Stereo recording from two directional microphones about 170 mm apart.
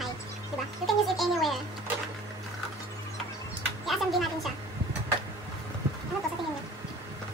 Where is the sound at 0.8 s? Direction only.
Centre (ahead or behind).